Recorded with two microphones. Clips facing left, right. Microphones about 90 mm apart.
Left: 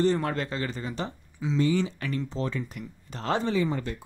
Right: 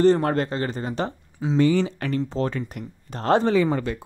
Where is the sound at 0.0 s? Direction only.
50° right (ahead or behind).